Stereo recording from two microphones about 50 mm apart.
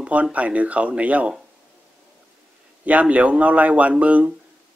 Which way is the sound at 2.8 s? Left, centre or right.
Right.